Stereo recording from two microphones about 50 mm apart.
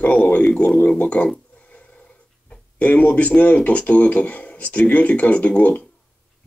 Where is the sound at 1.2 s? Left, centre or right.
Left.